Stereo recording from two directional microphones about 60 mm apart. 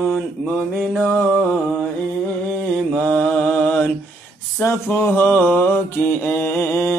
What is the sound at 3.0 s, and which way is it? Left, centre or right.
Mantra, left.